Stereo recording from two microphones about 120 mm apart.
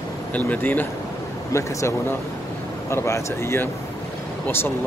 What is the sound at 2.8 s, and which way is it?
Speech, 25° left (ahead or behind).